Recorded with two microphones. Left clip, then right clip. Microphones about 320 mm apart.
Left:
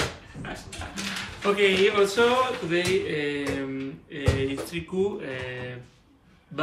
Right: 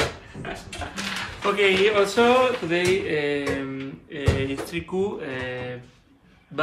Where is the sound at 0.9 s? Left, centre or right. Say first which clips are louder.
Right 2 dB; centre.